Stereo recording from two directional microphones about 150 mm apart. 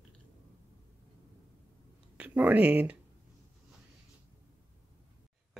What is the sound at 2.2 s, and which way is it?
Speech, 10° right (ahead or behind).